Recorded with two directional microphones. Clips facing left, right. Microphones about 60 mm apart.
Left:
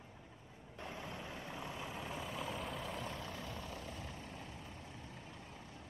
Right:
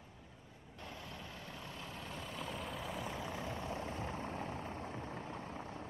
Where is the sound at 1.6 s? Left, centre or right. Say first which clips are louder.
Left 3 dB; centre; by 4.7 s right.